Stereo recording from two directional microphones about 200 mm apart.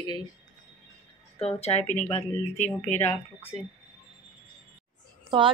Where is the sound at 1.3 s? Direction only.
30° left (ahead or behind).